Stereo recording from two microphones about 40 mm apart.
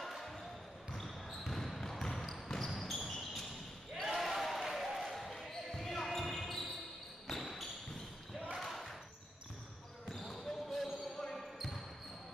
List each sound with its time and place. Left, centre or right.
0.0 s basketball bounce: centre
0.9 s a sound: centre
1.5 s basketball bounce: centre
2.8 s basketball bounce: centre
10.2 s basketball bounce: centre